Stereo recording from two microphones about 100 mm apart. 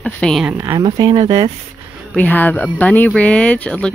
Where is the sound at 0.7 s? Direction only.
45° right (ahead or behind).